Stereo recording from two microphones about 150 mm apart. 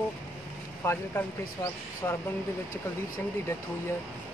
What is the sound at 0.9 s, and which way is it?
Speech, 15° left (ahead or behind).